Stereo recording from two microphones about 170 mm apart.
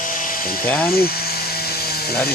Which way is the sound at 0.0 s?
55° left (ahead or behind).